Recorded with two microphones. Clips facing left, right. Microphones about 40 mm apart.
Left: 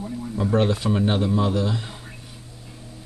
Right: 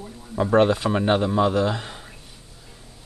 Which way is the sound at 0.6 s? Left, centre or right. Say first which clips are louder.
Right 3 dB; centre.